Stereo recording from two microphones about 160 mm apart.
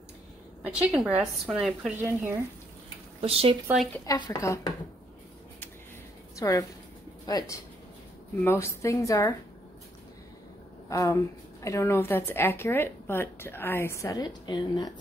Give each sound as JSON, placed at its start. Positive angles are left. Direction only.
{"t": 0.7, "sound": "a woman's voice", "side_deg": -5}
{"t": 2.0, "sound": "speech", "side_deg": -15}
{"t": 3.2, "sound": "speech", "side_deg": -35}
{"t": 4.0, "sound": "a woman's voice", "side_deg": 20}
{"t": 6.3, "sound": "a woman's voice", "side_deg": 20}
{"t": 10.9, "sound": "a woman's voice", "side_deg": 20}